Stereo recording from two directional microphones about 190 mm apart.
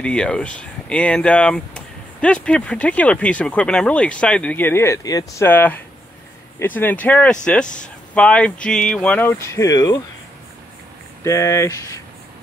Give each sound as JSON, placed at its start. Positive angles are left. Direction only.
{"t": 0.0, "sound": "speech", "side_deg": 5}
{"t": 7.6, "sound": "speech", "side_deg": 40}
{"t": 8.1, "sound": "speech", "side_deg": 5}
{"t": 11.2, "sound": "speech", "side_deg": 15}